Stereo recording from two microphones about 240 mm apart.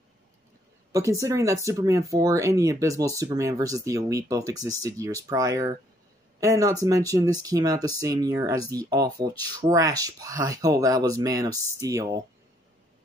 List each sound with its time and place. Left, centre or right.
1.2 s speech: centre